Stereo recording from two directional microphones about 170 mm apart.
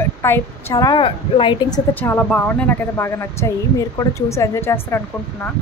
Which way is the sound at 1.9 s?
10° left (ahead or behind).